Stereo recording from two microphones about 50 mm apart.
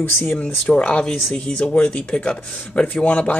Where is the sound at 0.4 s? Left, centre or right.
Left.